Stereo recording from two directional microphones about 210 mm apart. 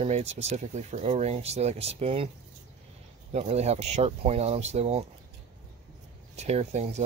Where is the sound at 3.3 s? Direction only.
30° right (ahead or behind).